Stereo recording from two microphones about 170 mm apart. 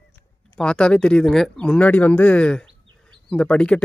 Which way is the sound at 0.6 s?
5° left (ahead or behind).